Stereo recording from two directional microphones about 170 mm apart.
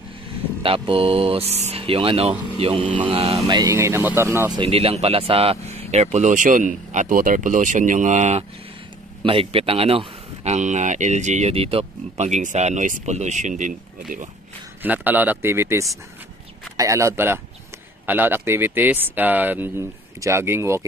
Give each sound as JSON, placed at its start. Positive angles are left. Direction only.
{"t": 0.6, "sound": "speech", "side_deg": -30}
{"t": 4.6, "sound": "speech", "side_deg": -35}
{"t": 9.2, "sound": "speech", "side_deg": -30}
{"t": 14.8, "sound": "speech", "side_deg": -10}